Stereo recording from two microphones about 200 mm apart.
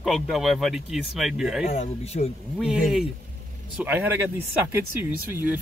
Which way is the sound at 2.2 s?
40° left (ahead or behind).